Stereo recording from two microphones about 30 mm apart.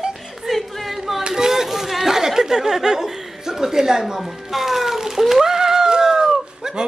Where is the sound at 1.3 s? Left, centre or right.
Centre.